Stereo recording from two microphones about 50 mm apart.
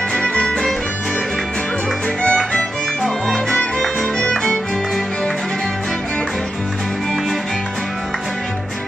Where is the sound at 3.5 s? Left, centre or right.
Centre.